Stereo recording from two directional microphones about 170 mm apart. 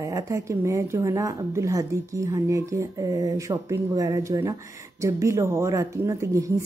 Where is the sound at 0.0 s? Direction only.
20° right (ahead or behind).